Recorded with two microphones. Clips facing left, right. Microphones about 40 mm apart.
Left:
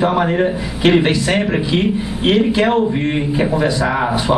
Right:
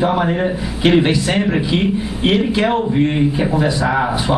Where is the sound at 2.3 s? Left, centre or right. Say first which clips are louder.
Left 2 dB; centre.